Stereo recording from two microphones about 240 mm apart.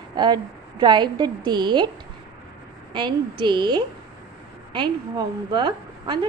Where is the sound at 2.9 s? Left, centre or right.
Centre.